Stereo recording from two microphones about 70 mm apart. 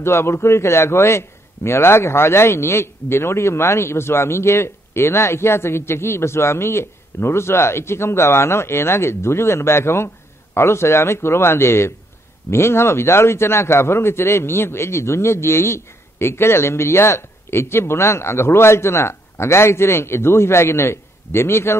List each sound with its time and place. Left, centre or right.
0.0 s a man's voice: left